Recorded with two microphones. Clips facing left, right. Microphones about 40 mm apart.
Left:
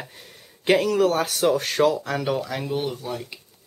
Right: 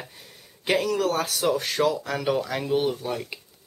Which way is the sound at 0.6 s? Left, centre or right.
Centre.